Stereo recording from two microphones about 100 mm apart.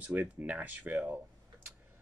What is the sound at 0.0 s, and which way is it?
A man's voice, 15° right (ahead or behind).